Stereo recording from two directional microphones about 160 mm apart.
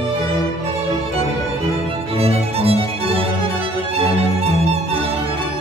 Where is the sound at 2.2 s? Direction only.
40° right (ahead or behind).